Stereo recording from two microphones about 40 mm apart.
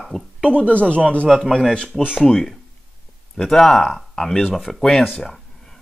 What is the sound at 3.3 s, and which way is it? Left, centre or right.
Speech, centre.